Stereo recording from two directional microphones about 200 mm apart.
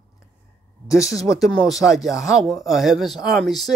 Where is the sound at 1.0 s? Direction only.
15° left (ahead or behind).